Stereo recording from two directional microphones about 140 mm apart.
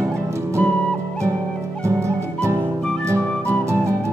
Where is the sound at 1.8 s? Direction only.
20° right (ahead or behind).